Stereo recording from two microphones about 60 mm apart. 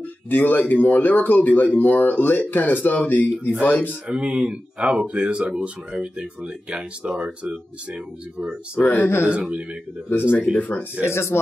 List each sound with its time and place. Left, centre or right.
0.3 s speech: left
4.1 s speech: centre
8.7 s speech: left
9.3 s speech: right
10.6 s speech: left
11.1 s speech: left